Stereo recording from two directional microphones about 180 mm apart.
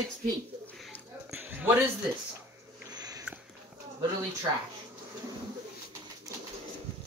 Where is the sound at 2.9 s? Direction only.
20° right (ahead or behind).